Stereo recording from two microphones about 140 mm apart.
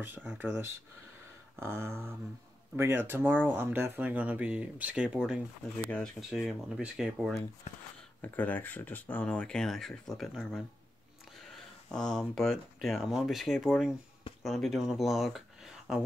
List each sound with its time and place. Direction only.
0.3 s speech: 15° right (ahead or behind)
7.7 s speech: 50° left (ahead or behind)
8.2 s speech: 10° left (ahead or behind)
11.9 s speech: 5° left (ahead or behind)